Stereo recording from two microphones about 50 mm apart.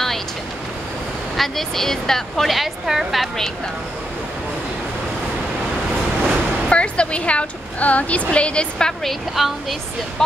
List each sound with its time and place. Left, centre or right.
1.3 s speech: centre
6.7 s a woman's voice: left
9.0 s speech: centre